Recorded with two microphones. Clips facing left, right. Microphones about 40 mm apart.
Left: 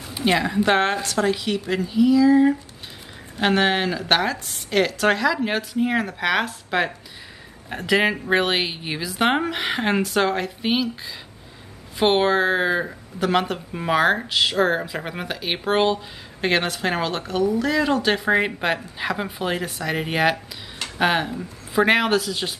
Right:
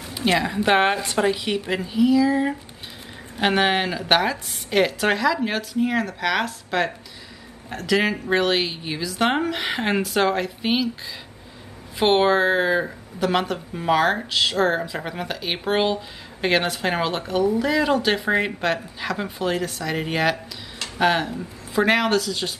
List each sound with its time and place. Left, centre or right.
0.2 s a woman's voice: centre
18.6 s a woman's voice: centre